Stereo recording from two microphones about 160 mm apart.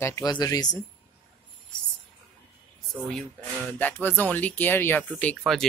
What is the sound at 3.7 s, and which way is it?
Speech, 10° left (ahead or behind).